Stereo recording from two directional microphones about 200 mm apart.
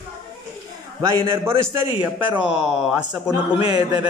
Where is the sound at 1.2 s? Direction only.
15° right (ahead or behind).